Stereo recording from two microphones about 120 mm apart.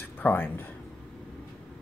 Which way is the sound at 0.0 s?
15° left (ahead or behind).